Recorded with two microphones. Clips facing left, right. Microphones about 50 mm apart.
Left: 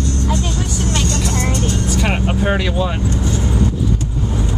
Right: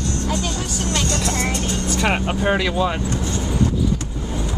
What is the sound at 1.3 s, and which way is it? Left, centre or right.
Vehicle, right.